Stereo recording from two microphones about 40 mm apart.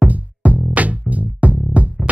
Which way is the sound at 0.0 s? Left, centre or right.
Right.